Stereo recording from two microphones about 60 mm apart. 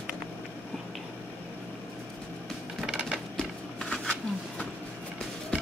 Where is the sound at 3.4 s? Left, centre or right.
Centre.